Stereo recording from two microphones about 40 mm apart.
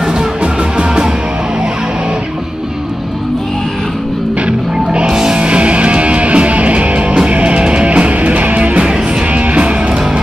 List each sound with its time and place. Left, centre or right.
0.4 s music: right
4.5 s music: right
5.1 s music: centre
5.4 s music: right